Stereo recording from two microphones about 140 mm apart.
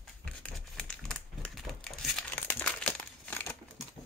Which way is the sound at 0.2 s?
5° left (ahead or behind).